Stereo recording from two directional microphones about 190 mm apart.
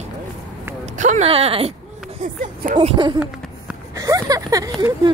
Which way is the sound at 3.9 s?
15° right (ahead or behind).